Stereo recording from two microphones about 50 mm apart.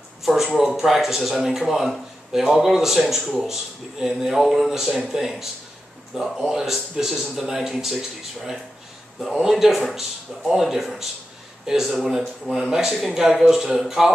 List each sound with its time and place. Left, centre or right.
0.2 s a sound: centre
0.6 s speech: centre
3.2 s speech: centre
3.4 s speech: centre
9.2 s speech: centre
13.0 s speech: centre